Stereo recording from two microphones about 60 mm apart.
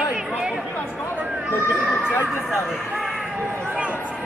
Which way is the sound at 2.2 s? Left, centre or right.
Centre.